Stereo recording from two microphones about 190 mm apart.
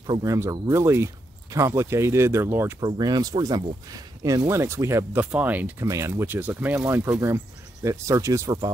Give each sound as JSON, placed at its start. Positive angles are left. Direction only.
{"t": 0.0, "sound": "speech", "side_deg": -20}